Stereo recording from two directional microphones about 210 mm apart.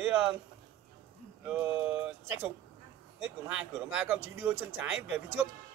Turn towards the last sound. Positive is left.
turn(degrees=-5)  # may be behind; listen again after turning